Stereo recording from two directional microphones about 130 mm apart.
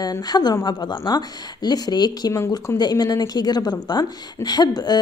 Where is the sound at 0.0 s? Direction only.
30° left (ahead or behind).